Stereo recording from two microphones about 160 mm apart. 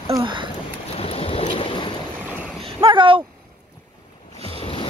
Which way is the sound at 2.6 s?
30° right (ahead or behind).